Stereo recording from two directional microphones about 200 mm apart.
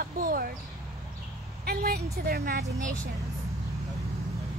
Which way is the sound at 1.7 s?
50° right (ahead or behind).